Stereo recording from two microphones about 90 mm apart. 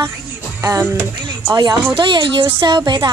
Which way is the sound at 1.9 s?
60° right (ahead or behind).